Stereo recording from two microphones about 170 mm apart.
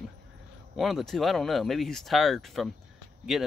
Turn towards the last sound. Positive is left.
turn(degrees=0)  # may be behind; listen again after turning